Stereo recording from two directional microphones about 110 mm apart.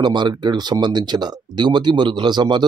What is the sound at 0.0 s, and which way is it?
Speech, 40° right (ahead or behind).